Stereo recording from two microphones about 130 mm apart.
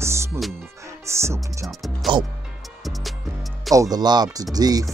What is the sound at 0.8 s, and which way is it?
Music, 20° right (ahead or behind).